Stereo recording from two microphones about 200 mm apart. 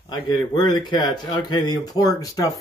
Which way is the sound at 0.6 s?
20° left (ahead or behind).